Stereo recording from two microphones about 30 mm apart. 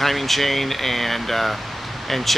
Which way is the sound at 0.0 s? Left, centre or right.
Centre.